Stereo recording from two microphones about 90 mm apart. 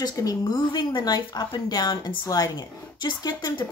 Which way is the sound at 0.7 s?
55° left (ahead or behind).